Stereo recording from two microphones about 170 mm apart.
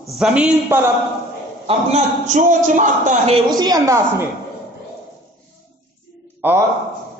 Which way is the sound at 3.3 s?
25° right (ahead or behind).